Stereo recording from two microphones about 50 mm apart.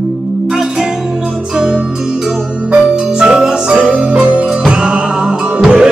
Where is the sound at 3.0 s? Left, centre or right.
Centre.